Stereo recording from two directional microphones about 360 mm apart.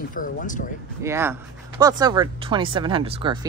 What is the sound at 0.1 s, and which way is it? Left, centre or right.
Speech, left.